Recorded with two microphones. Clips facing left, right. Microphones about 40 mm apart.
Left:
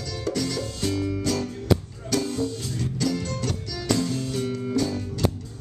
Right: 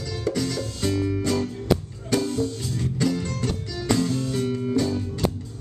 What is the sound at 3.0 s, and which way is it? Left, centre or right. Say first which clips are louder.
Music: right 2 dB; centre.